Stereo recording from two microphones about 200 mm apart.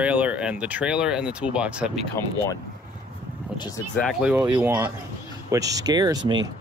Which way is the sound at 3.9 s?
Centre (ahead or behind).